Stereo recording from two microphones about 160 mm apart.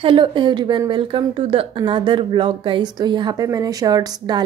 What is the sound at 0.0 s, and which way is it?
A woman's voice, 30° right (ahead or behind).